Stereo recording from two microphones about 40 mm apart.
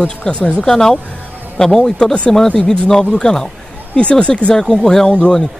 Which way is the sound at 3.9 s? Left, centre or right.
Left.